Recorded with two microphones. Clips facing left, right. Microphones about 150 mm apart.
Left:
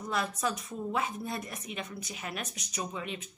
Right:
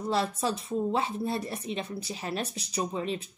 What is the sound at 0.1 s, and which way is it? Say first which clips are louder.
Speech: right 3 dB; 30° right (ahead or behind).